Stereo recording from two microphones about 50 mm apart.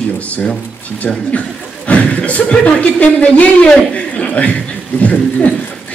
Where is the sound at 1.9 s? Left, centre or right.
Left.